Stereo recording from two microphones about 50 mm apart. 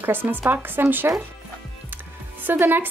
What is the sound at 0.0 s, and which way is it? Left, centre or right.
A woman's voice, right.